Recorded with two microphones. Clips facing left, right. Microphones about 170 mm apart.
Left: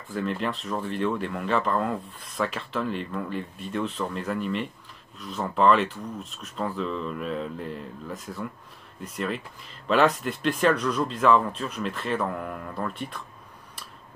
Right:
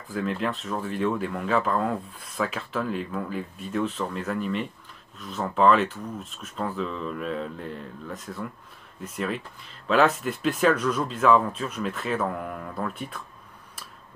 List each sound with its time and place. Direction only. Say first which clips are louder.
0.1 s speech: right 1 dB; centre (ahead or behind)